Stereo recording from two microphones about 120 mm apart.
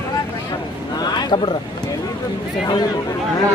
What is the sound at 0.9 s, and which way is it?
Speech, 35° left (ahead or behind).